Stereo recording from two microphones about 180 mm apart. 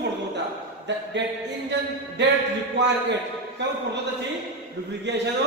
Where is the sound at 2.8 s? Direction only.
75° right (ahead or behind).